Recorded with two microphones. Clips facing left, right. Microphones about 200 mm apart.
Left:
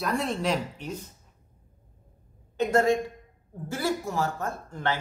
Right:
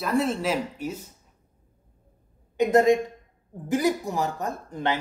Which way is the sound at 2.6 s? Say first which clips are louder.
Right 4 dB; 15° right (ahead or behind).